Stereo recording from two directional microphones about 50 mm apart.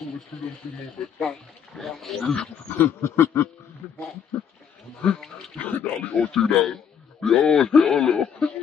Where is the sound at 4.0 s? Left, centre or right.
Left.